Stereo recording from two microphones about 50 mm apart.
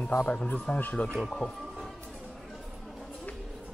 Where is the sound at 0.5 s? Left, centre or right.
Left.